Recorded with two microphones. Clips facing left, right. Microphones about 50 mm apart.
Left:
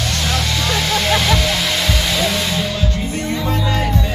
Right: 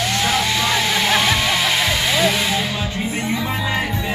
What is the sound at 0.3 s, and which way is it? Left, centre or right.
Music, centre.